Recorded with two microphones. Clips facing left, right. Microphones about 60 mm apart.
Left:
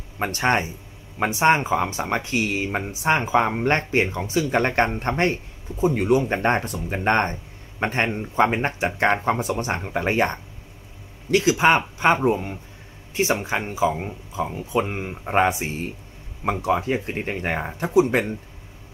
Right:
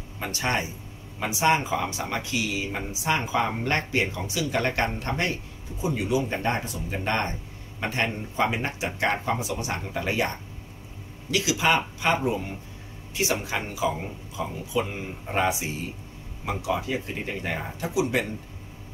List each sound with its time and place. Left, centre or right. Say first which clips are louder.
0.2 s speech: left 6 dB; left